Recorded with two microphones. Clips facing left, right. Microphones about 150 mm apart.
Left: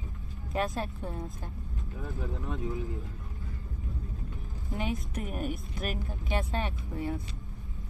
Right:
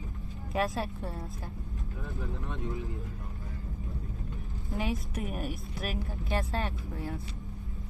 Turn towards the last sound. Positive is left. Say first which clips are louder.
# left 3 dB
turn(degrees=0)  # may be behind; listen again after turning